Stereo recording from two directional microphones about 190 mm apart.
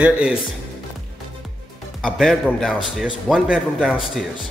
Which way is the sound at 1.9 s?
Centre (ahead or behind).